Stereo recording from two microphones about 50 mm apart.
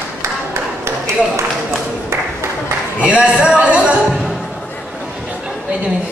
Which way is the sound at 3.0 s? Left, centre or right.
Right.